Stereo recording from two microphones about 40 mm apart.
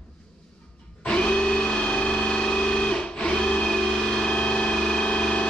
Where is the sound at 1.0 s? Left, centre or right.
Left.